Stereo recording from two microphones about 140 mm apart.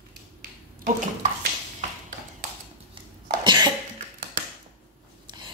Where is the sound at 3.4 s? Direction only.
35° right (ahead or behind).